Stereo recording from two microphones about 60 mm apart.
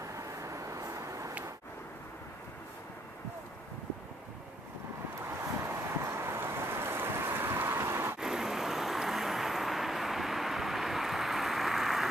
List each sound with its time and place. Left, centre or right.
0.0 s vehicle: right
5.6 s vehicle: right
8.2 s vehicle: centre